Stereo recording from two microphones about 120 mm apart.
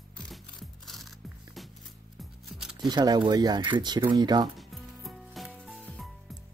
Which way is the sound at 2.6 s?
5° right (ahead or behind).